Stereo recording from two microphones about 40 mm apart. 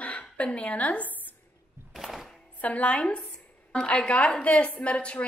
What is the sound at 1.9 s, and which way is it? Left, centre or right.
Music, centre.